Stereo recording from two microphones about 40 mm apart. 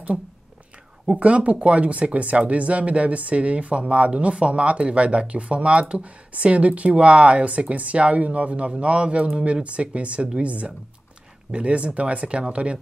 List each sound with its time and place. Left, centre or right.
1.0 s speech: right